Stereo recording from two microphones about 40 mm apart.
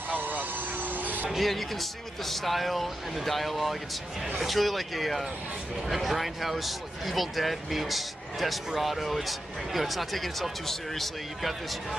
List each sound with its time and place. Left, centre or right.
0.2 s vehicle: right
1.4 s speech: centre